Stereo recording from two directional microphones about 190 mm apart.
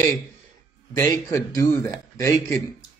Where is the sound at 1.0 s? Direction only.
15° left (ahead or behind).